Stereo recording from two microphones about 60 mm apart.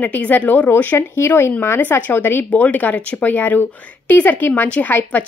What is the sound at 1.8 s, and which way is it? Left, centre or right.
Speech, left.